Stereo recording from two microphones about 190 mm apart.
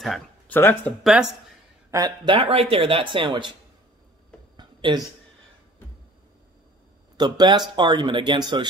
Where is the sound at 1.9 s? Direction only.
20° right (ahead or behind).